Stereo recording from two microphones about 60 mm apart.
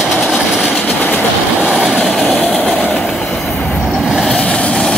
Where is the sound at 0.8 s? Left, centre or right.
Left.